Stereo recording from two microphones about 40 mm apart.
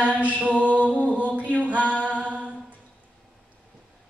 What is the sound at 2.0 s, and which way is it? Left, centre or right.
Mantra, right.